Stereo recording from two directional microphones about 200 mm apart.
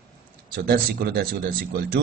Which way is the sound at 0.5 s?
50° right (ahead or behind).